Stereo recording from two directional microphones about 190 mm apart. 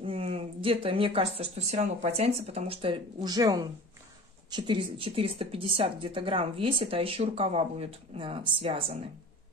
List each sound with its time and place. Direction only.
0.0 s speech: 30° right (ahead or behind)